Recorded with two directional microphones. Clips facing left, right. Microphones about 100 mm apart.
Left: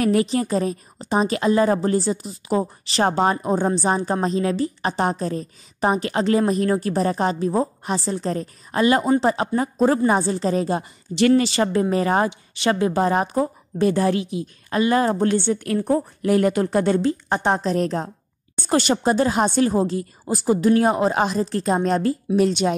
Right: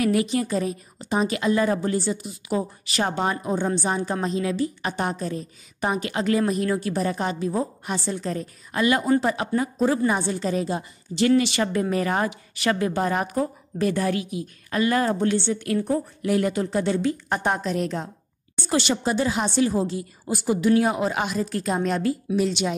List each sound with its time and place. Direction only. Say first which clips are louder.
0.0 s a woman's voice: left 3 dB; 35° left (ahead or behind)
15.2 s speech: left 3 dB; 50° left (ahead or behind)
17.0 s a woman's voice: left 3 dB; 30° left (ahead or behind); by 22.8 s 45° left (ahead or behind)